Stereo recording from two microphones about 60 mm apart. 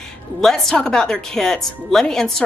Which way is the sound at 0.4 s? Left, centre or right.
Centre.